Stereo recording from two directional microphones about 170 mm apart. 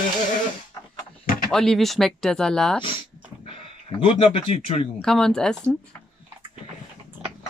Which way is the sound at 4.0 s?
35° left (ahead or behind).